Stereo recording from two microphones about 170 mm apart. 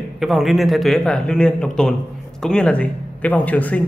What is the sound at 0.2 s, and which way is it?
A man's voice, centre (ahead or behind).